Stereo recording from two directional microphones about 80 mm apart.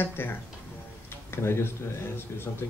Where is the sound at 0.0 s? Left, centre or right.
Left.